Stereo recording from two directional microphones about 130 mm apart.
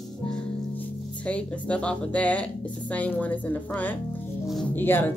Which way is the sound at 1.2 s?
10° left (ahead or behind).